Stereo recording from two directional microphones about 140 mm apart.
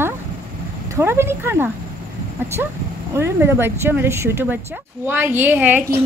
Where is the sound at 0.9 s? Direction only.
15° right (ahead or behind).